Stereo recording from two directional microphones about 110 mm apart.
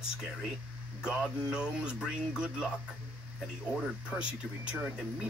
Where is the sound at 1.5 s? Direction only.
10° right (ahead or behind).